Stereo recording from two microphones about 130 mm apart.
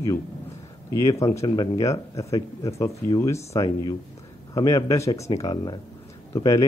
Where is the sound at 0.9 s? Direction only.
25° left (ahead or behind).